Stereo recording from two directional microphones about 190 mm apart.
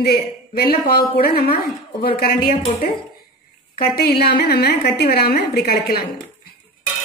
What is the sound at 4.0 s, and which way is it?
Speech, 55° left (ahead or behind).